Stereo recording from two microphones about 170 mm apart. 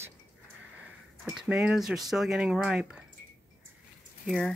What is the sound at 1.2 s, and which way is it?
Speech, 5° right (ahead or behind).